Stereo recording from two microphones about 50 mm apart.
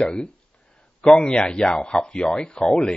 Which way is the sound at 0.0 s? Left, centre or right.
Centre.